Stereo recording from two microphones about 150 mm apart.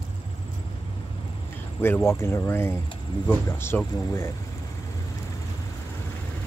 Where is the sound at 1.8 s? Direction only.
15° left (ahead or behind).